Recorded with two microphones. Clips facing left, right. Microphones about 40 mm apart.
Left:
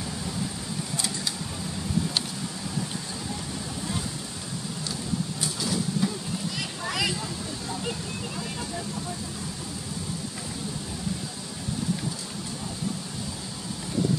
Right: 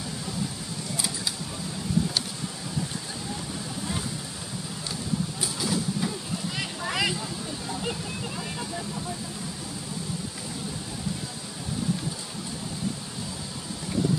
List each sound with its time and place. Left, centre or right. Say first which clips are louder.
0.9 s creak: right 1 dB; centre
5.4 s vehicle: even; centre
6.9 s vehicle: right 1 dB; centre